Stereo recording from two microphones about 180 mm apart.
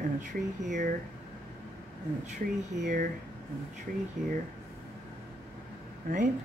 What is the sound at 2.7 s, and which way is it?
Speech, 45° right (ahead or behind).